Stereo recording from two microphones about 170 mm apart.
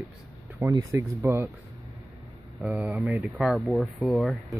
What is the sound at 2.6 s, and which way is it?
Speech, 5° right (ahead or behind).